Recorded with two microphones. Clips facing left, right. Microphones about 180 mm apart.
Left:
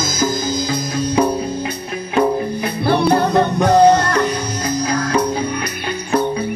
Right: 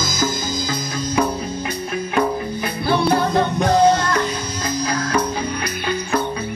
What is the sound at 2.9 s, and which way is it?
Music, 60° left (ahead or behind).